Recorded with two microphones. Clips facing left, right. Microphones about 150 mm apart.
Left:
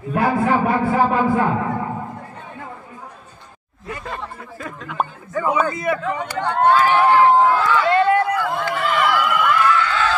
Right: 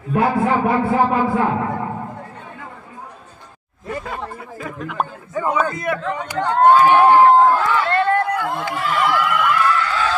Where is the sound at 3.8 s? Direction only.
10° right (ahead or behind).